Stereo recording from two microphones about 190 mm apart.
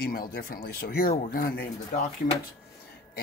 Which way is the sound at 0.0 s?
50° left (ahead or behind).